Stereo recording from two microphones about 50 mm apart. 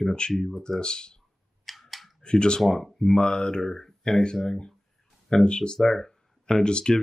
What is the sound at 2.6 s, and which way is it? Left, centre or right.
Speech, centre.